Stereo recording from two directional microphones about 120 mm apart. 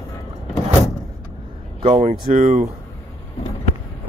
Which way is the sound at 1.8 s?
55° right (ahead or behind).